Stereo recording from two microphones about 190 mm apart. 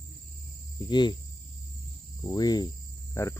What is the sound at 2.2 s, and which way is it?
Cricket, 20° left (ahead or behind).